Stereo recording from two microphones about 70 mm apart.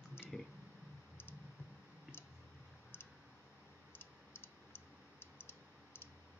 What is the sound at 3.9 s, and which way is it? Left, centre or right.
Typing, left.